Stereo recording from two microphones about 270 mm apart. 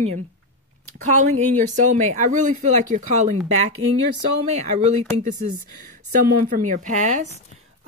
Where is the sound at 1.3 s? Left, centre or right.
Right.